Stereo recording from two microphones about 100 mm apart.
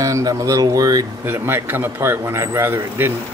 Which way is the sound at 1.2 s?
20° right (ahead or behind).